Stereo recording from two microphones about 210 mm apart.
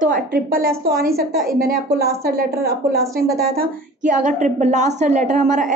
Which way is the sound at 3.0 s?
15° right (ahead or behind).